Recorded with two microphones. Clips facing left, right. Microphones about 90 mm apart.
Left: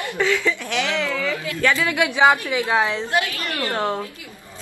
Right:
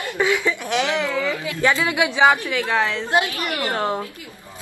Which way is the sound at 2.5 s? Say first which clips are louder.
Left 1 dB; 15° left (ahead or behind).